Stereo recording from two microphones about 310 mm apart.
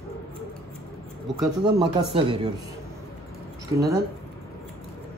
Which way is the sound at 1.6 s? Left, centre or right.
Centre.